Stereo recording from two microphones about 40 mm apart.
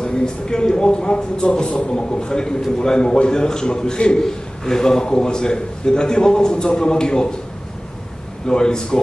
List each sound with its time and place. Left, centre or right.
0.0 s a man's voice: centre
8.5 s a man's voice: centre